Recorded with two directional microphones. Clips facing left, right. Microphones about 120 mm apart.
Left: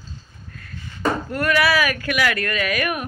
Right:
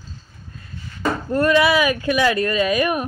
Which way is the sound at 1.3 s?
25° right (ahead or behind).